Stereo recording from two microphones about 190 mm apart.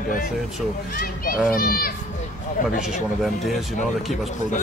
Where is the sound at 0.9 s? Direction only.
50° left (ahead or behind).